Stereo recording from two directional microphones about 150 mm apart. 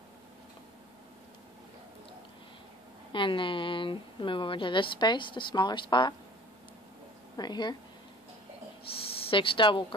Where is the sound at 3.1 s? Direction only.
35° left (ahead or behind).